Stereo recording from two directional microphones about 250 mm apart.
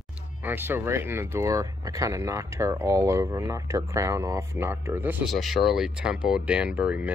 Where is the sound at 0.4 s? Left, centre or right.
Centre.